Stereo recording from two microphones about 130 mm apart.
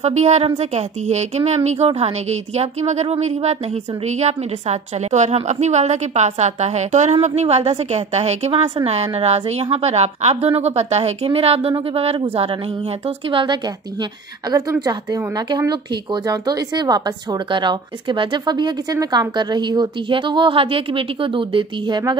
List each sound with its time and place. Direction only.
0.0 s a woman's voice: 60° right (ahead or behind); by 13.6 s 40° right (ahead or behind)
14.5 s a woman's voice: 30° right (ahead or behind)